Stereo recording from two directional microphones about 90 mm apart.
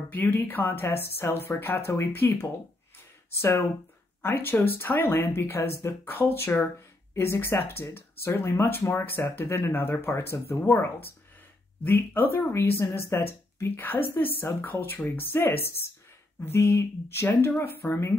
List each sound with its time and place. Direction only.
0.1 s speech: 20° left (ahead or behind)